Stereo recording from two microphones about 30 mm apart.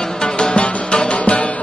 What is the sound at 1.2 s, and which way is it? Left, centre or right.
Music, left.